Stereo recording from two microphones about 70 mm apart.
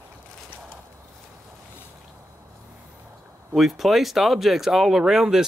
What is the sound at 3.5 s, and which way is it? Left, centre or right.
Speech, centre.